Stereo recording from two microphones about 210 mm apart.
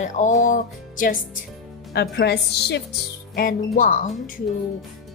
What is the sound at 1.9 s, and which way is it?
A woman's voice, 50° left (ahead or behind).